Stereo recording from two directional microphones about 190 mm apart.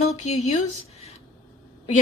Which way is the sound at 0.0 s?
35° left (ahead or behind).